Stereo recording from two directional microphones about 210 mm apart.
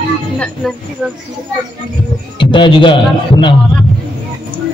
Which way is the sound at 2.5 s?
25° left (ahead or behind).